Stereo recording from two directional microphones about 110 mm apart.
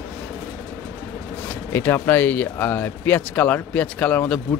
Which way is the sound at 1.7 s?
20° left (ahead or behind).